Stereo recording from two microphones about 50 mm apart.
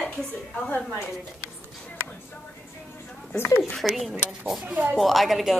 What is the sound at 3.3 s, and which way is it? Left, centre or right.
Speech, left.